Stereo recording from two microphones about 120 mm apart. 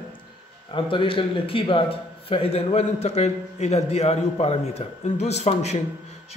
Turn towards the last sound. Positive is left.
turn(degrees=65)  # may be behind; listen again after turning